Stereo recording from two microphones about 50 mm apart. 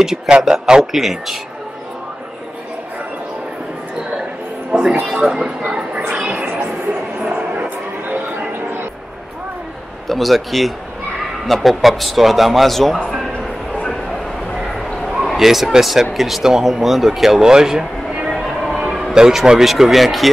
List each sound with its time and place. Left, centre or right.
0.0 s speech: centre
4.6 s music: centre
5.0 s speech: centre
5.9 s music: right
6.4 s music: right
6.9 s a sound: right
10.0 s speech: centre
13.4 s bow-wow: centre
14.0 s bow-wow: centre
15.2 s speech: centre
18.8 s a sound: centre
19.1 s speech: centre